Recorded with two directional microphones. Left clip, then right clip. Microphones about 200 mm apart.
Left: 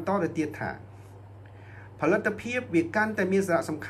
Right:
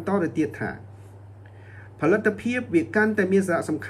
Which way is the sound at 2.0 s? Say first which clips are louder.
Right 4 dB; 30° left (ahead or behind).